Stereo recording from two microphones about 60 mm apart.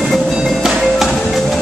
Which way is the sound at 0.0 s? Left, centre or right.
Centre.